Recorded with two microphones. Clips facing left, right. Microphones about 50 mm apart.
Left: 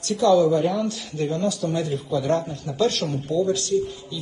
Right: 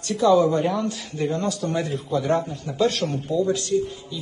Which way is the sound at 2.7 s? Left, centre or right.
Right.